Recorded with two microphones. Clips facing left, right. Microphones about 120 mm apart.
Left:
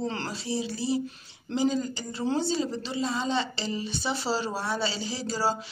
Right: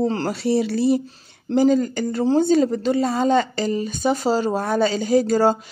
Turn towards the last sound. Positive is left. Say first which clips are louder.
# right 12 dB
turn(degrees=-50)  # may be behind; listen again after turning